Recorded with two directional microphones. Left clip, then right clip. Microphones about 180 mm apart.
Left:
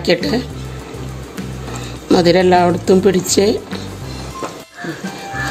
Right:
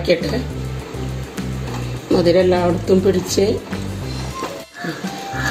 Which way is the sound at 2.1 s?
70° left (ahead or behind).